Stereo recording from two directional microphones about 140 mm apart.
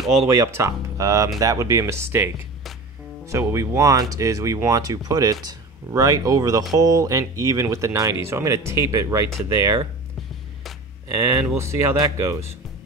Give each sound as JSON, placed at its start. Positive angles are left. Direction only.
{"t": 0.3, "sound": "speech", "side_deg": -20}
{"t": 11.1, "sound": "speech", "side_deg": -20}